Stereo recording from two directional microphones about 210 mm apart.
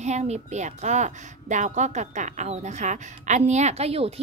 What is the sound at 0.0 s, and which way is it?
A child's voice, 30° right (ahead or behind).